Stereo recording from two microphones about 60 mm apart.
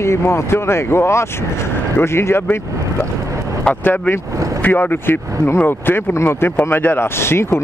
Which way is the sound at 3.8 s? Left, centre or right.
Left.